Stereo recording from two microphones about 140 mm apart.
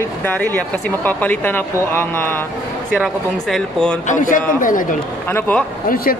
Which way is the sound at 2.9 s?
Centre (ahead or behind).